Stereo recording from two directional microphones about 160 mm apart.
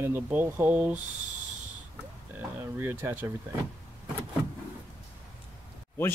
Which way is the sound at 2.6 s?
15° right (ahead or behind).